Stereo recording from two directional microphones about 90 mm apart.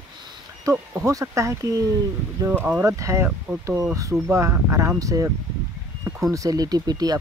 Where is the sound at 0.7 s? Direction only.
40° right (ahead or behind).